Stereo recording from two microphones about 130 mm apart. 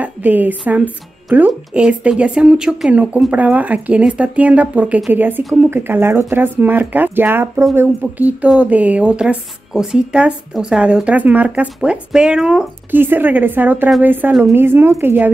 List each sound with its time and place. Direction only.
0.0 s speech: 10° right (ahead or behind)